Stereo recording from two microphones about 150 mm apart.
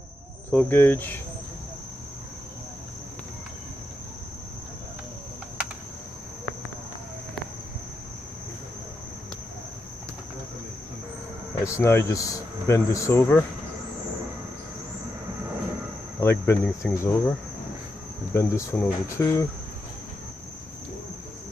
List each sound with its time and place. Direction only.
0.5 s speech: 10° left (ahead or behind)
11.6 s a man's voice: 20° left (ahead or behind)
16.2 s a man's voice: 15° left (ahead or behind)